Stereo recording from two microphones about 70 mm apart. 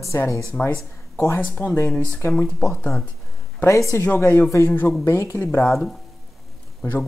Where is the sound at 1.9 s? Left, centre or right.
Centre.